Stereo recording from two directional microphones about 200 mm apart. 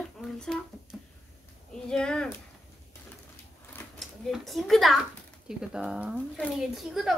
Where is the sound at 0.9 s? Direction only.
Centre (ahead or behind).